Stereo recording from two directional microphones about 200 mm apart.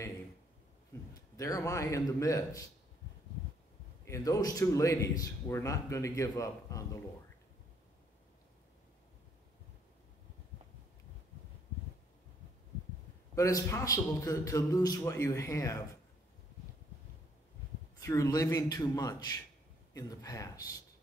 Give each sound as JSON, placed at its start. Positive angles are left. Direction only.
{"t": 1.1, "sound": "a man's voice", "side_deg": 15}
{"t": 4.0, "sound": "a man's voice", "side_deg": 15}
{"t": 13.3, "sound": "a man's voice", "side_deg": 15}
{"t": 17.9, "sound": "a man's voice", "side_deg": 15}